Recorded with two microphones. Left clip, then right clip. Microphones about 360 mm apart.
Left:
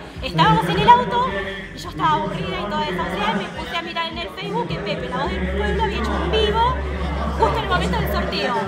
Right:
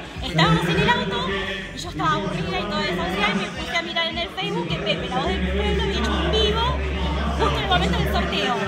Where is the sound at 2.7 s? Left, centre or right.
Centre.